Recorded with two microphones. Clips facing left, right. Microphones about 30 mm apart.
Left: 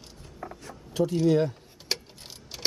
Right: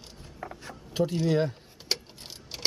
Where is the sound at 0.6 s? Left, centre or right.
Right.